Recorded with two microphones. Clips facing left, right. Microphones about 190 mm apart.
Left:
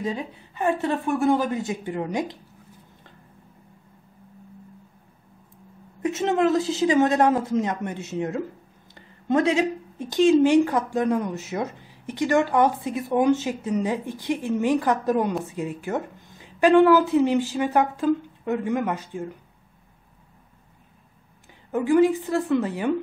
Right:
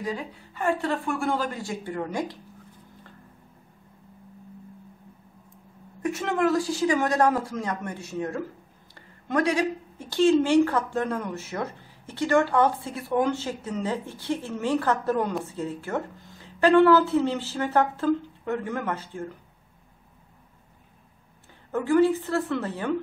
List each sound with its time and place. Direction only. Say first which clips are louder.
0.0 s speech: left 3 dB; 20° left (ahead or behind)
6.0 s speech: left 3 dB; 20° left (ahead or behind)
21.7 s speech: left 2 dB; 15° left (ahead or behind)